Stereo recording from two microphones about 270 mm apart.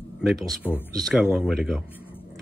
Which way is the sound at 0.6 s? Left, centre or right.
Centre.